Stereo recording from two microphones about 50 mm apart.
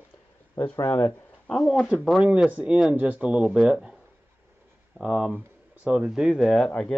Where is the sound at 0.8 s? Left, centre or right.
Left.